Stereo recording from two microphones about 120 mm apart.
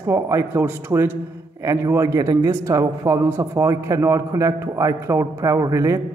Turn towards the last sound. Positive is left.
turn(degrees=-25)  # may be behind; listen again after turning